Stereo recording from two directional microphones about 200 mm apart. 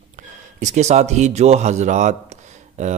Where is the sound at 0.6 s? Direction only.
35° right (ahead or behind).